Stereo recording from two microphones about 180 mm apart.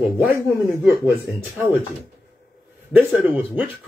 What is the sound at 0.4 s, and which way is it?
Speech, 15° right (ahead or behind).